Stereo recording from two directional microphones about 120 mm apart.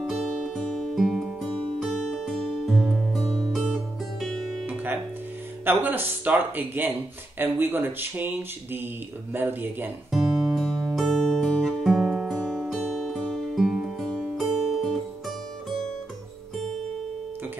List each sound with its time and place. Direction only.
0.0 s music: centre (ahead or behind)
5.7 s speech: 15° right (ahead or behind)
10.1 s music: centre (ahead or behind)